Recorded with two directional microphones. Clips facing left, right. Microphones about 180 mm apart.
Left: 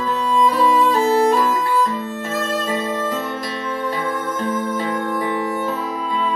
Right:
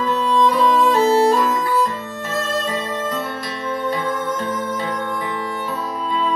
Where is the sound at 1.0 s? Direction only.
30° right (ahead or behind).